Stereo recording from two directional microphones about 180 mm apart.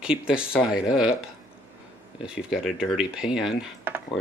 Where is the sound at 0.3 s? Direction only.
5° right (ahead or behind).